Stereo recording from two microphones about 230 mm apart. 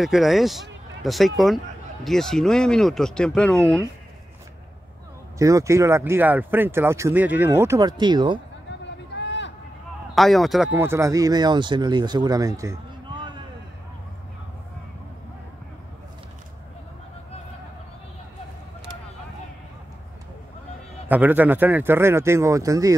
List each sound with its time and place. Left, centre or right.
0.0 s speech: centre
5.4 s speech: centre
8.6 s a sound: left
10.1 s speech: centre
21.1 s speech: centre